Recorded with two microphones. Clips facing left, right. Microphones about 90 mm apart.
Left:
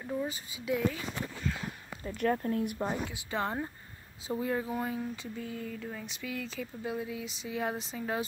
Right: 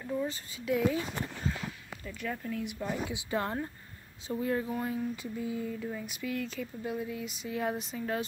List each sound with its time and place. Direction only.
0.0 s speech: 10° left (ahead or behind)
2.1 s speech: 45° left (ahead or behind)
3.3 s speech: centre (ahead or behind)
5.1 s speech: 5° right (ahead or behind)